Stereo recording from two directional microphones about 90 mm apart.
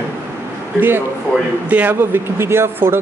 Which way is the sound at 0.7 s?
25° right (ahead or behind).